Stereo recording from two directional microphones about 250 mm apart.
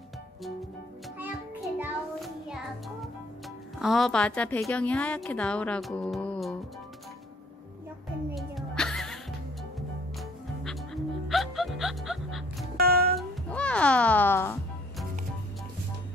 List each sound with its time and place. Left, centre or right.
1.8 s music: centre
3.8 s a woman's voice: centre
8.4 s music: centre
12.7 s music: right
13.5 s music: centre